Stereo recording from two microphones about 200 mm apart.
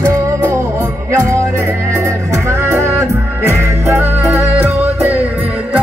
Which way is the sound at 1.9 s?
15° right (ahead or behind).